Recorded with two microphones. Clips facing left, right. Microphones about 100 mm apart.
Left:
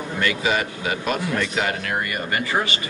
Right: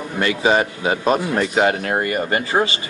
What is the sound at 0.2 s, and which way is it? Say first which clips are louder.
A man's voice: right 6 dB; 30° right (ahead or behind).